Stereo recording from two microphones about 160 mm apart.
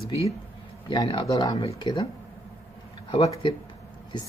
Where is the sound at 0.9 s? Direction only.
30° left (ahead or behind).